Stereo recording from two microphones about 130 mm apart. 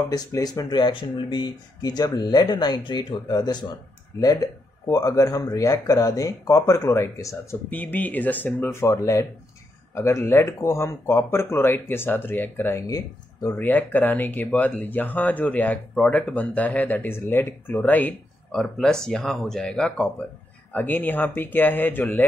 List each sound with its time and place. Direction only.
0.1 s speech: 30° left (ahead or behind)
4.1 s speech: 20° left (ahead or behind)
13.6 s speech: 15° left (ahead or behind)